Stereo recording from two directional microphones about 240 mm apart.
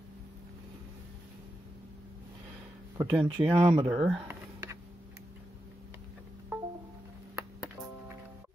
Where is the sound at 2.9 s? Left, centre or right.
Centre.